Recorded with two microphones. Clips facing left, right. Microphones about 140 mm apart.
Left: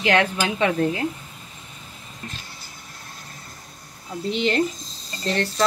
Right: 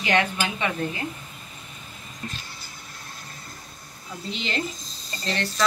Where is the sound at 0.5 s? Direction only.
90° left.